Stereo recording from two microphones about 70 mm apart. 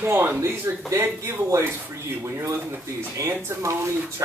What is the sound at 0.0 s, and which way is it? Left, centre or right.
Speech, right.